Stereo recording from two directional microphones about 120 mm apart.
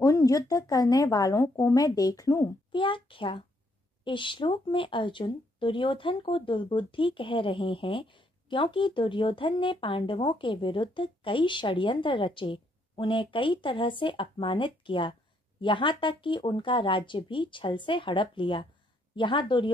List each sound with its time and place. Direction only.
0.0 s speech: 30° left (ahead or behind)
2.7 s speech: 45° left (ahead or behind)